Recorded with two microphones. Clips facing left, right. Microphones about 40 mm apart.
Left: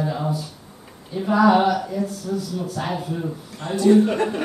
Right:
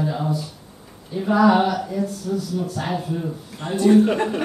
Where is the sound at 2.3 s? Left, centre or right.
Centre.